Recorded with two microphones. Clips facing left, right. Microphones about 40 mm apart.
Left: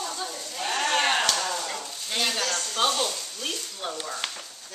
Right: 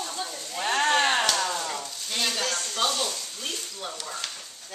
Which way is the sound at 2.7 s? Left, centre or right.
Centre.